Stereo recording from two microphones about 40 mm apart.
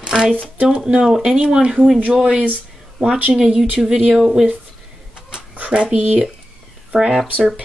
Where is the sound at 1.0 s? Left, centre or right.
Centre.